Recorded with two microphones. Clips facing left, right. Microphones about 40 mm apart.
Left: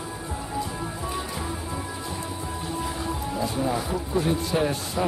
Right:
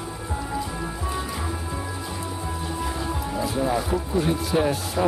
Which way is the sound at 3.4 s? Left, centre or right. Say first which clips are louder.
Right 3 dB; centre.